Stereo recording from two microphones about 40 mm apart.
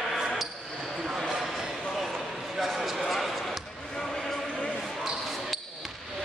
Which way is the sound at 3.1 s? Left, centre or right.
Centre.